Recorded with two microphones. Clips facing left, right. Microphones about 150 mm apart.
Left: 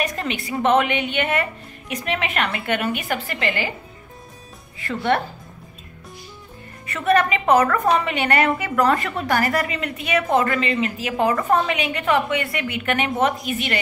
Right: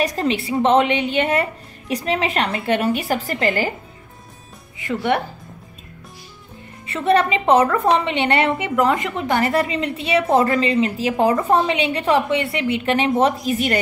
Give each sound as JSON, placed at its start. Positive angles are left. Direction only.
{"t": 0.0, "sound": "a woman's voice", "side_deg": -35}
{"t": 4.7, "sound": "speech", "side_deg": -15}
{"t": 6.9, "sound": "a woman's voice", "side_deg": -30}